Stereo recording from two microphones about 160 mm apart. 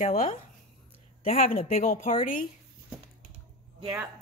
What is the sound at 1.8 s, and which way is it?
Speech, 55° left (ahead or behind).